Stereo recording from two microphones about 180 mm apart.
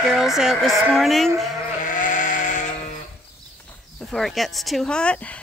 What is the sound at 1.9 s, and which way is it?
Sheep, 45° left (ahead or behind).